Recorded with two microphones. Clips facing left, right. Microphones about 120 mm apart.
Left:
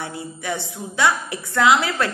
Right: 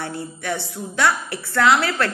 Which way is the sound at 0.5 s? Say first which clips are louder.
Right 1 dB; 15° left (ahead or behind).